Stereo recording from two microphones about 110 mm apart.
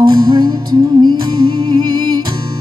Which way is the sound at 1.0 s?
45° right (ahead or behind).